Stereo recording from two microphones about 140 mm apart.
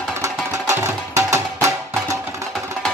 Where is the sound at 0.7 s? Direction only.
20° right (ahead or behind).